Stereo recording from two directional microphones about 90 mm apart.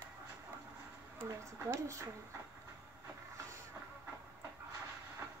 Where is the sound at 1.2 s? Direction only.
35° right (ahead or behind).